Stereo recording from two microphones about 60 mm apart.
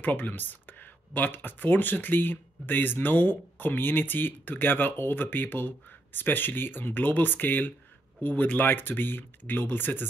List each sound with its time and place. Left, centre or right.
0.0 s speech: left